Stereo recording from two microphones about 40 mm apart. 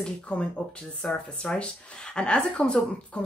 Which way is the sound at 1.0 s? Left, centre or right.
Centre.